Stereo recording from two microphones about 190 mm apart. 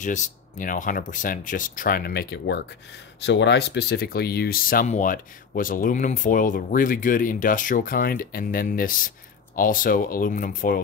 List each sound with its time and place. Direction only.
0.0 s speech: 40° left (ahead or behind)